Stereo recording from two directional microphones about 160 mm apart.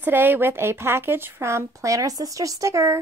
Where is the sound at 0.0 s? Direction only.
10° right (ahead or behind).